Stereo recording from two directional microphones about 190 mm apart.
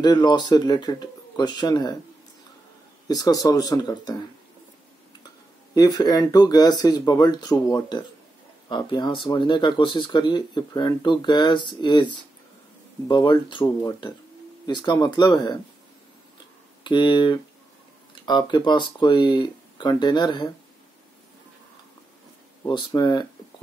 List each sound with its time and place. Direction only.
0.0 s speech: 20° left (ahead or behind)
3.1 s speech: 20° left (ahead or behind)
5.8 s speech: 20° left (ahead or behind)
16.8 s speech: 25° left (ahead or behind)
22.7 s speech: 25° left (ahead or behind)